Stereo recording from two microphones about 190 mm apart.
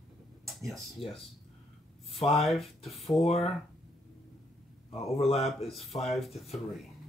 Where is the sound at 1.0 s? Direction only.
30° left (ahead or behind).